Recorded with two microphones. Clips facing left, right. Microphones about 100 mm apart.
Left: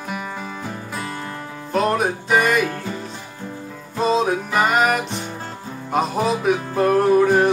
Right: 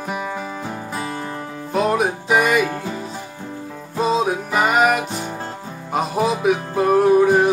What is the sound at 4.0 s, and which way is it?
Music, 5° right (ahead or behind).